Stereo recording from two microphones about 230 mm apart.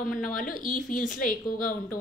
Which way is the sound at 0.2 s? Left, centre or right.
Left.